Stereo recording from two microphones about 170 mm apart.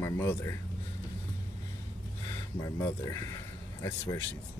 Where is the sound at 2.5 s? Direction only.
20° left (ahead or behind).